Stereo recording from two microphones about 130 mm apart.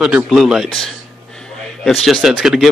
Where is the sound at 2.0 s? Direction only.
5° right (ahead or behind).